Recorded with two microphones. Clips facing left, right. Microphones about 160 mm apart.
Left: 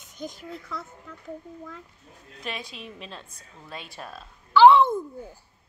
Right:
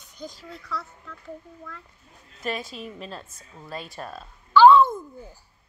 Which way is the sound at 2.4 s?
Centre (ahead or behind).